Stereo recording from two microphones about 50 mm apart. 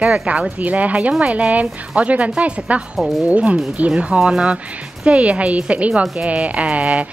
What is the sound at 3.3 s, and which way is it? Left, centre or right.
A woman's voice, right.